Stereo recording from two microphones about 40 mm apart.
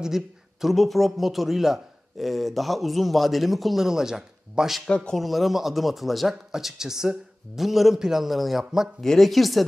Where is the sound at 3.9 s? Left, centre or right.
Centre.